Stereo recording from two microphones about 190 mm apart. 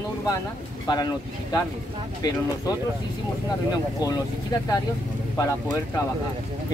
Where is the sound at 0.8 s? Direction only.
20° left (ahead or behind).